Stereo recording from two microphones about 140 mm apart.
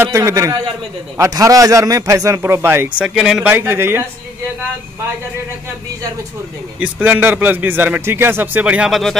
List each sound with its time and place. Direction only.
0.0 s speech: 20° right (ahead or behind)
3.2 s a man's voice: 5° right (ahead or behind)
6.8 s a man's voice: 10° right (ahead or behind)